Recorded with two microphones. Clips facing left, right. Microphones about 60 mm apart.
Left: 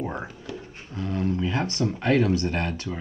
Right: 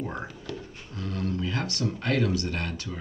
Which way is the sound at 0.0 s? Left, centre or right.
Centre.